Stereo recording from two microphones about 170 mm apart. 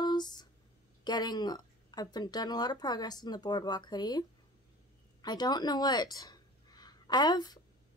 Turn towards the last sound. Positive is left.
turn(degrees=25)  # may be behind; listen again after turning